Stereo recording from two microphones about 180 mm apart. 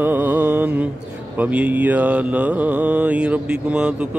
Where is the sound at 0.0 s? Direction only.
10° right (ahead or behind).